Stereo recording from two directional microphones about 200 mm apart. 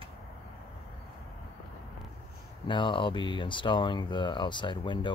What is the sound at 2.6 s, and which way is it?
Speech, 25° left (ahead or behind).